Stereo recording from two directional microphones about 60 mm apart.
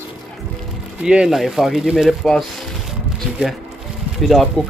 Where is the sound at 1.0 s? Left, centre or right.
Centre.